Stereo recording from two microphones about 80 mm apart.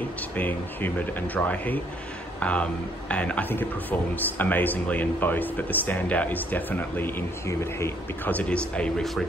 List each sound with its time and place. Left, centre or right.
0.4 s speech: left
8.3 s speech: centre